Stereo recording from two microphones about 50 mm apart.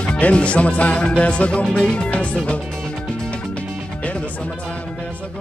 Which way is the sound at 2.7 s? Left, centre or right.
Centre.